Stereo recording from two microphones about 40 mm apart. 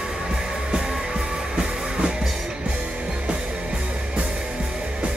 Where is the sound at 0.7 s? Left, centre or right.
Centre.